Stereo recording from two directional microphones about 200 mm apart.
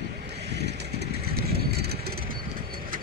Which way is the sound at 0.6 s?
55° right (ahead or behind).